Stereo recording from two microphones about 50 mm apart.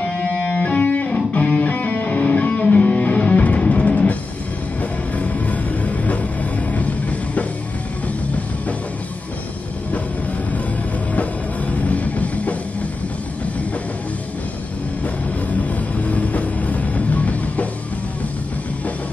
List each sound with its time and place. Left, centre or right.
0.2 s music: left
11.7 s music: left
15.5 s music: left